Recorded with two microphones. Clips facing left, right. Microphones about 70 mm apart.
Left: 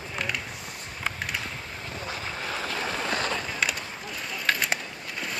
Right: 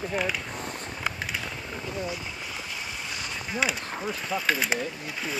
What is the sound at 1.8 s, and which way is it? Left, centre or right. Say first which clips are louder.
Boat: right 2 dB; left.